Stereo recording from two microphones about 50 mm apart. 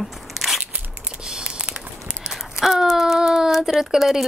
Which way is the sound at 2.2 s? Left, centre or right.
Centre.